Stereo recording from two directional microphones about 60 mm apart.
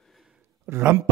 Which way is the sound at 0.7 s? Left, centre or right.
Right.